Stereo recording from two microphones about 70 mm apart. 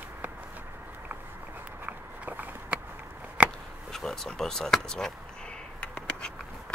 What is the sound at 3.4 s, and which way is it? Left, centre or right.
Chop, centre.